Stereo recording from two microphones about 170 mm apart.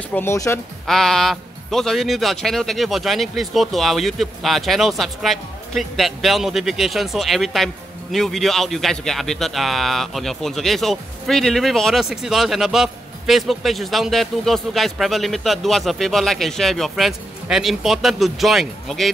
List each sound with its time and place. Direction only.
0.1 s speech: 15° left (ahead or behind)
0.8 s speech: centre (ahead or behind)